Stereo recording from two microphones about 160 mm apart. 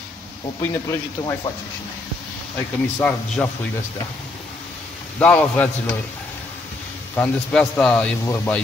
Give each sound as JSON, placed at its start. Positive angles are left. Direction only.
{"t": 0.6, "sound": "speech", "side_deg": 20}
{"t": 3.0, "sound": "speech", "side_deg": 10}
{"t": 5.2, "sound": "speech", "side_deg": 10}
{"t": 7.2, "sound": "speech", "side_deg": 5}